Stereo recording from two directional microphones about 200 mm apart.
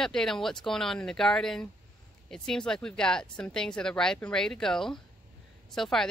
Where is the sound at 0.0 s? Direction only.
5° left (ahead or behind).